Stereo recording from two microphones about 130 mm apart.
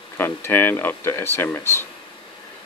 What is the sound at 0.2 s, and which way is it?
Speech, 15° left (ahead or behind).